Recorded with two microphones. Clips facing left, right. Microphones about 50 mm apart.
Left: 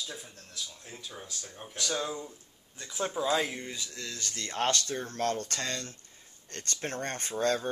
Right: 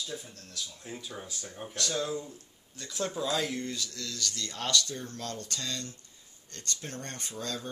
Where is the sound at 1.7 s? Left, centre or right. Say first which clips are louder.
Right 1 dB; centre.